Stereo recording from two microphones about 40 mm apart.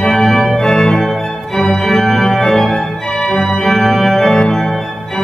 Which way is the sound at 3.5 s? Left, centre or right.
Centre.